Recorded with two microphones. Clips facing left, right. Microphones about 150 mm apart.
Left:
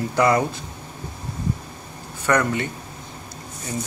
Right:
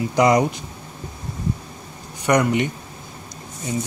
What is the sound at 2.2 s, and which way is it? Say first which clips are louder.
Speech: right 3 dB; 15° right (ahead or behind).